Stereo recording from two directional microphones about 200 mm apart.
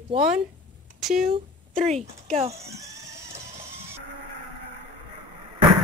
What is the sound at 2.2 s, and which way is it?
Speech, 30° right (ahead or behind).